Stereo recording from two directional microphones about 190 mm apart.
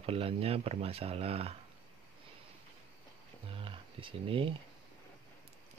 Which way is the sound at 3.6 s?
25° right (ahead or behind).